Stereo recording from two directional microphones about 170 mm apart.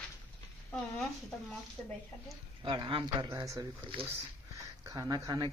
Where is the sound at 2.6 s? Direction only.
30° right (ahead or behind).